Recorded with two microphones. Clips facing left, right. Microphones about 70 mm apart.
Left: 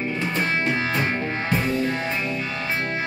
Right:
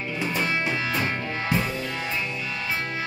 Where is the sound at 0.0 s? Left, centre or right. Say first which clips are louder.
Left 2 dB; left.